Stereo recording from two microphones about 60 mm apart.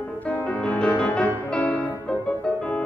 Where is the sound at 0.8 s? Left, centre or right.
Centre.